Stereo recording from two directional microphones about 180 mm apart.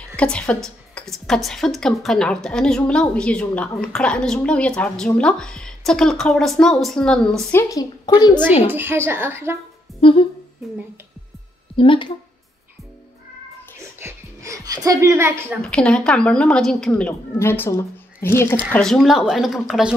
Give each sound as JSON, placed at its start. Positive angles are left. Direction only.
{"t": 0.1, "sound": "a woman's voice", "side_deg": 5}
{"t": 7.7, "sound": "a woman's voice", "side_deg": 25}
{"t": 8.7, "sound": "speech", "side_deg": -15}
{"t": 9.9, "sound": "speech", "side_deg": 30}
{"t": 11.7, "sound": "a woman's voice", "side_deg": 30}
{"t": 13.7, "sound": "music", "side_deg": -15}
{"t": 15.6, "sound": "a woman's voice", "side_deg": 5}
{"t": 18.7, "sound": "a woman's voice", "side_deg": 5}